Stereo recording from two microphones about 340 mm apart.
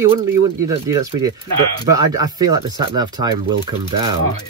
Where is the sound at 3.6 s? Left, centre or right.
Right.